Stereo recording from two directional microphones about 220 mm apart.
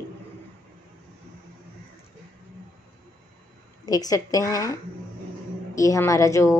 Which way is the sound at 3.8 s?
15° left (ahead or behind).